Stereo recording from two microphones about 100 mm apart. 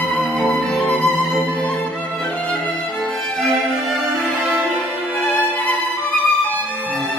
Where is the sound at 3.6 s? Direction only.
Centre (ahead or behind).